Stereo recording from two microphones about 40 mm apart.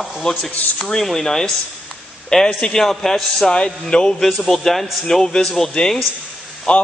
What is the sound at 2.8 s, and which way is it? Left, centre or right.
Speech, centre.